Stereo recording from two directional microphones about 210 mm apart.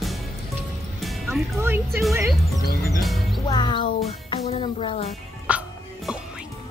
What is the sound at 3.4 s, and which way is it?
Music, 20° left (ahead or behind).